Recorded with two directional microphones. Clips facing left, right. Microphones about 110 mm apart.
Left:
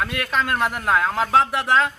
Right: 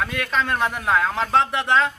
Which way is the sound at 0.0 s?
Centre (ahead or behind).